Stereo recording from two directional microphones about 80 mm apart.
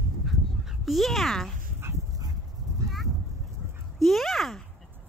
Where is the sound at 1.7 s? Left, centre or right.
Right.